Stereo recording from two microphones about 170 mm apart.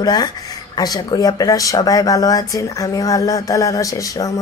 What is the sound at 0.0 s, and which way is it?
Speech, 25° left (ahead or behind).